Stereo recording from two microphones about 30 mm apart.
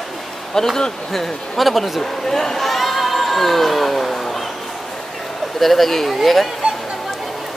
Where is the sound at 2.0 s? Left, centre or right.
Centre.